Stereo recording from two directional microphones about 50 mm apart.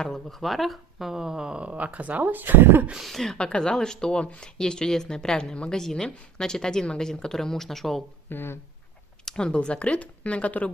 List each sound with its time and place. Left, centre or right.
0.0 s speech: centre
1.7 s speech: right
3.0 s speech: centre
3.3 s speech: centre
8.3 s speech: left
9.2 s speech: centre